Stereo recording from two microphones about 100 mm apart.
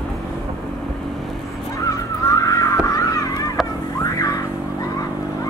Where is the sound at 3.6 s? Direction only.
5° right (ahead or behind).